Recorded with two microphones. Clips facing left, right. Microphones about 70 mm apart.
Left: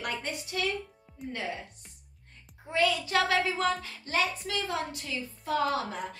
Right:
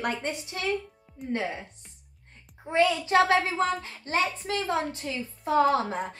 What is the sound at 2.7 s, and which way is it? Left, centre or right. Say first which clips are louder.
A child's voice: right 4 dB; right.